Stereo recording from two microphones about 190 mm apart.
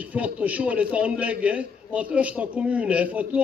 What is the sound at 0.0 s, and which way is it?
A man's voice, 10° right (ahead or behind).